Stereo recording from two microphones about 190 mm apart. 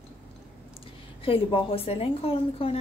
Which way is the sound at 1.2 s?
30° left (ahead or behind).